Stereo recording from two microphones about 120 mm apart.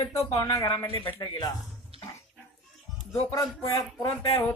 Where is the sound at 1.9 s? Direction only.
55° right (ahead or behind).